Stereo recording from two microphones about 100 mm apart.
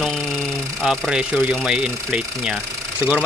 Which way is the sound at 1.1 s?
10° right (ahead or behind).